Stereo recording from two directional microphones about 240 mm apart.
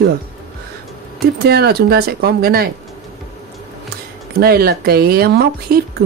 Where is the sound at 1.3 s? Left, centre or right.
Right.